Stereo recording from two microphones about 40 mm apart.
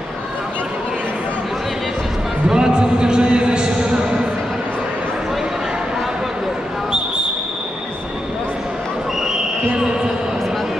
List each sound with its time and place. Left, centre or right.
2.4 s a man's voice: centre